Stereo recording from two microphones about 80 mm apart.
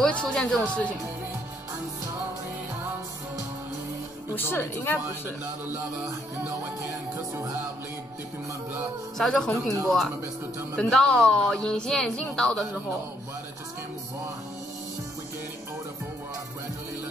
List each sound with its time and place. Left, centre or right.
0.0 s a woman's voice: centre
4.4 s speech: left
9.2 s a woman's voice: centre